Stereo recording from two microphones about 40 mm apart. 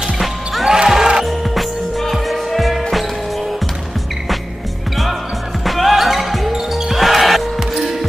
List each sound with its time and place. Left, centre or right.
0.7 s basketball bounce: centre
1.2 s music: centre
5.7 s basketball bounce: centre
6.7 s music: centre